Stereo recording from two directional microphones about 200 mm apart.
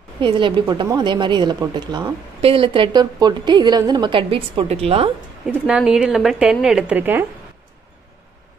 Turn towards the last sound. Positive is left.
turn(degrees=-10)  # may be behind; listen again after turning